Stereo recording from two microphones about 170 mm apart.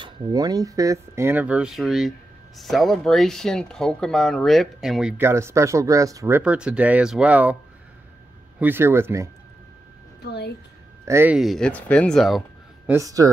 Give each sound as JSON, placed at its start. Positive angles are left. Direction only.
{"t": 0.0, "sound": "speech", "side_deg": -25}
{"t": 8.5, "sound": "speech", "side_deg": -10}
{"t": 10.2, "sound": "a woman's voice", "side_deg": 75}
{"t": 11.1, "sound": "speech", "side_deg": -15}
{"t": 11.3, "sound": "speech", "side_deg": 0}
{"t": 12.9, "sound": "speech", "side_deg": -20}